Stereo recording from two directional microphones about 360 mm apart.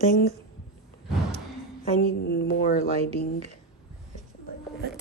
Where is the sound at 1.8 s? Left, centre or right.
Left.